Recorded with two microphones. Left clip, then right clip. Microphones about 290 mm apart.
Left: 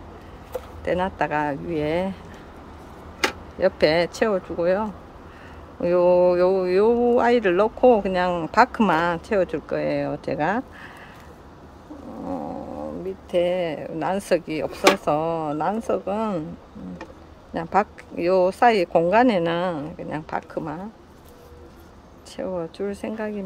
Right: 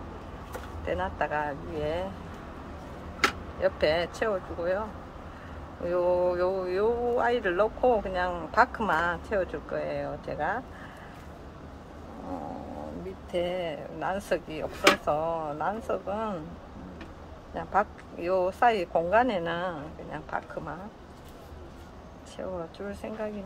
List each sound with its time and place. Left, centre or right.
0.8 s speech: left
3.5 s speech: left
5.9 s speech: left
13.7 s speech: left
17.6 s speech: left
22.4 s speech: left